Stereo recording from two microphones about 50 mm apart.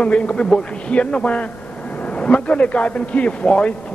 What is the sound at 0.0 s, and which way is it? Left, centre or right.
A man's voice, left.